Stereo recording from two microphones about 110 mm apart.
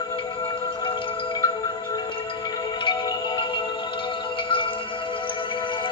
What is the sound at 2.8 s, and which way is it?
Marimba, 45° left (ahead or behind).